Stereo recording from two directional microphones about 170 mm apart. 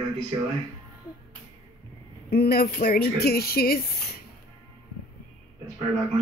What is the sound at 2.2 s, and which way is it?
Speech, 70° left (ahead or behind).